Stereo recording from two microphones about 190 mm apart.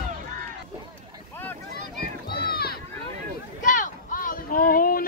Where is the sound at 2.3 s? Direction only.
55° left (ahead or behind).